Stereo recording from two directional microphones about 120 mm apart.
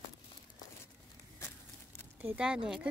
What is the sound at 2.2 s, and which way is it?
Speech, 10° right (ahead or behind).